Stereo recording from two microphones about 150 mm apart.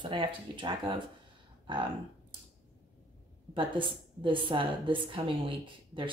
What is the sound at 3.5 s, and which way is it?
Speech, 35° right (ahead or behind).